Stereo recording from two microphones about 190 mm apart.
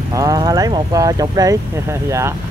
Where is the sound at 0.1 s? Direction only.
20° right (ahead or behind).